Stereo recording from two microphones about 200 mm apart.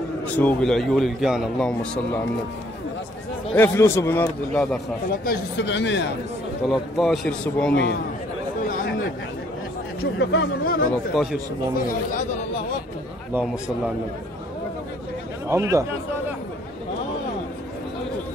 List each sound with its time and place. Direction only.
0.4 s a man's voice: 5° left (ahead or behind)
3.5 s a man's voice: 10° left (ahead or behind)
5.2 s speech: 55° left (ahead or behind)
6.7 s a man's voice: centre (ahead or behind)
7.7 s speech: 55° left (ahead or behind)
8.6 s chatter: 40° left (ahead or behind)
10.1 s speech: 55° left (ahead or behind)
13.3 s a man's voice: 5° right (ahead or behind)
15.4 s speech: 15° right (ahead or behind)